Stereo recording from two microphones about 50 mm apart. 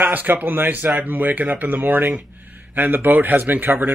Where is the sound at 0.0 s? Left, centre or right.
Right.